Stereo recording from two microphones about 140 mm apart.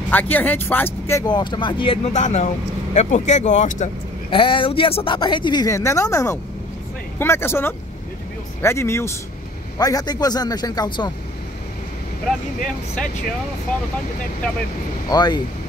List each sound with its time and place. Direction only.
0.1 s speech: 10° left (ahead or behind)
1.2 s speech: 30° left (ahead or behind)
2.1 s speech: 55° left (ahead or behind)
4.3 s speech: 35° left (ahead or behind)
15.0 s speech: 30° left (ahead or behind)